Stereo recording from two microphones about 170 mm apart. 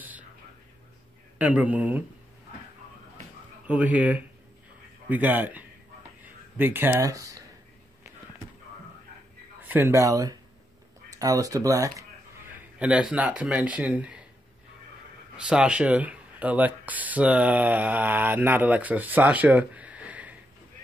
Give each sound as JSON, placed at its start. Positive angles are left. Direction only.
{"t": 1.4, "sound": "speech", "side_deg": -10}
{"t": 3.6, "sound": "speech", "side_deg": -10}
{"t": 9.6, "sound": "speech", "side_deg": -10}
{"t": 12.5, "sound": "speech", "side_deg": -10}
{"t": 15.3, "sound": "speech", "side_deg": -5}